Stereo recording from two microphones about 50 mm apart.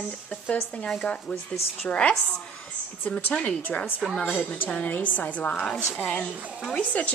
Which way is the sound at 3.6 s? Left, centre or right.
Left.